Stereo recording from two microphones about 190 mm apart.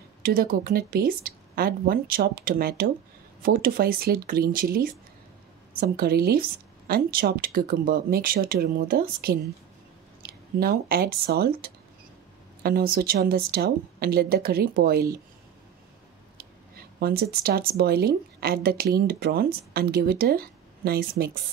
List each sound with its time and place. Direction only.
0.2 s speech: 50° right (ahead or behind)
17.0 s speech: 55° right (ahead or behind)